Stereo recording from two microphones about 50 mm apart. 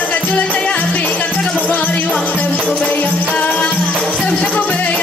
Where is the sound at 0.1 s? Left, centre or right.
Left.